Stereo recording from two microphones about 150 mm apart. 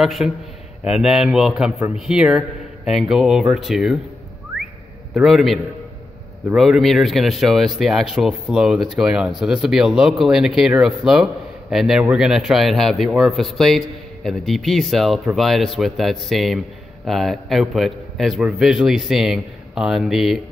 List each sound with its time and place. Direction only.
0.0 s a man's voice: centre (ahead or behind)
5.1 s a man's voice: centre (ahead or behind)